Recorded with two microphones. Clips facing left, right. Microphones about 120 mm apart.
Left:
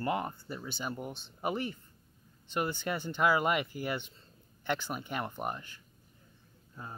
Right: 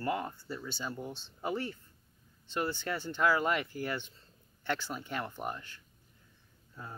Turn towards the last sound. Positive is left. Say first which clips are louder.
# left 2 dB
turn(degrees=15)  # may be behind; listen again after turning